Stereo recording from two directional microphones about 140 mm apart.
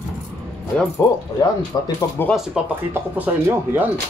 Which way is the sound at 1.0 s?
25° left (ahead or behind).